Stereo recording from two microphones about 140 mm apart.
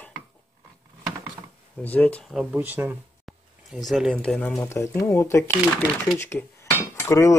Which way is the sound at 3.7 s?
Centre (ahead or behind).